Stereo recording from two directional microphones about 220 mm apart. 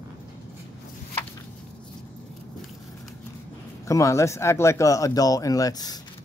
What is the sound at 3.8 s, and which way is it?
Speech, 15° left (ahead or behind).